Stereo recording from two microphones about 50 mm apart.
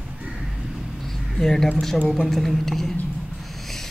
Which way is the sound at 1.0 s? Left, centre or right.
Centre.